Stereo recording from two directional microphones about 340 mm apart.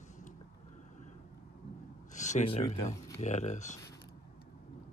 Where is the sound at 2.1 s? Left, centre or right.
Left.